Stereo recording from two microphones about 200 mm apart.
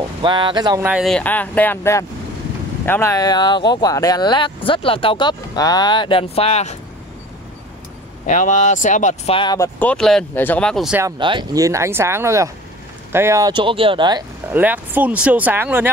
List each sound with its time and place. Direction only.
0.2 s speech: 25° right (ahead or behind)
0.8 s speech: centre (ahead or behind); by 6.8 s 35° left (ahead or behind)
8.3 s speech: 35° left (ahead or behind); by 9.7 s 20° left (ahead or behind)
9.8 s speech: 5° left (ahead or behind)
11.0 s speech: 20° right (ahead or behind)
14.5 s speech: 10° right (ahead or behind)